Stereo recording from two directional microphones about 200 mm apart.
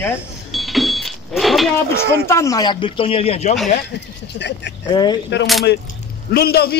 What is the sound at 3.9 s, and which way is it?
Speech, 60° left (ahead or behind).